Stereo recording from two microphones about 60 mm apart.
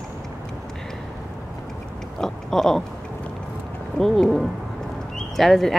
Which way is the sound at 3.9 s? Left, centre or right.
Centre.